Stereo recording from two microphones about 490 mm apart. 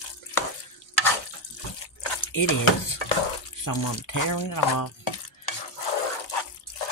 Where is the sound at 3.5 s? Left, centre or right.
Left.